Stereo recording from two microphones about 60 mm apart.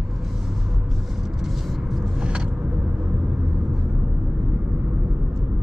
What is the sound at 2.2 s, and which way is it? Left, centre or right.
Vehicle, centre.